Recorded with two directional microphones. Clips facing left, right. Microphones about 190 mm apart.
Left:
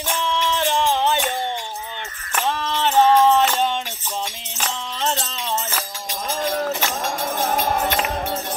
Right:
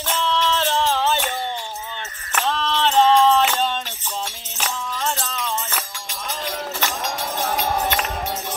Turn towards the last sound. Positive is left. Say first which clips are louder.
# left 3 dB
turn(degrees=40)  # may be behind; listen again after turning